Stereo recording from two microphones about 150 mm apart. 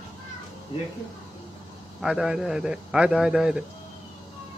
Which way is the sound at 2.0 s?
5° right (ahead or behind).